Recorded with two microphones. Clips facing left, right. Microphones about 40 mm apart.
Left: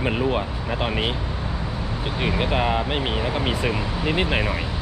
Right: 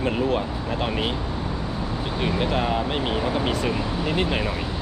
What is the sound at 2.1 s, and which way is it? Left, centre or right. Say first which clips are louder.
Speech: left 1 dB; centre.